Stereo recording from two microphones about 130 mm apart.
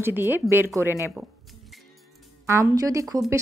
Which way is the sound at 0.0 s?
15° right (ahead or behind).